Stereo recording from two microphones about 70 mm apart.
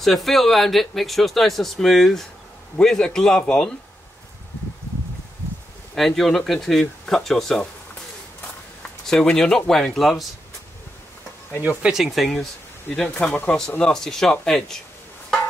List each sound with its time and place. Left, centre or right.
0.0 s a man's voice: centre
5.9 s speech: centre
9.0 s a man's voice: centre
11.8 s speech: centre
12.9 s a man's voice: centre